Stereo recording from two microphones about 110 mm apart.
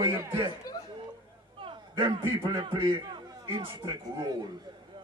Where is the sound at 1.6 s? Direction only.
50° right (ahead or behind).